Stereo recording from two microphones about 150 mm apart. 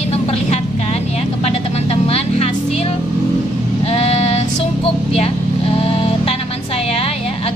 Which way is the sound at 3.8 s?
40° left (ahead or behind).